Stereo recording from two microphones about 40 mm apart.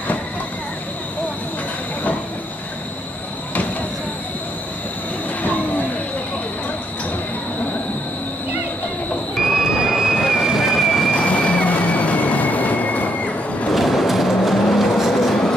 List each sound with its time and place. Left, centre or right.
5.4 s train: left
9.4 s vehicle: centre
11.1 s train: left
13.7 s vehicle: centre